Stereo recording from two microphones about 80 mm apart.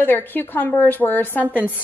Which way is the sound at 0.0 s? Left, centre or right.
Left.